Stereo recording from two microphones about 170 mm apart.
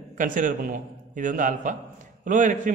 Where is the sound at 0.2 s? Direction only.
50° right (ahead or behind).